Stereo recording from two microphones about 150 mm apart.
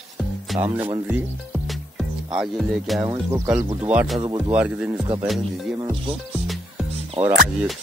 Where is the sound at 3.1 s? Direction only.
15° right (ahead or behind).